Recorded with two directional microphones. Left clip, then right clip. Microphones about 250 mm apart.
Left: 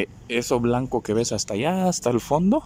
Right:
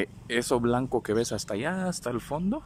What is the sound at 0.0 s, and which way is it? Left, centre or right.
Speech, centre.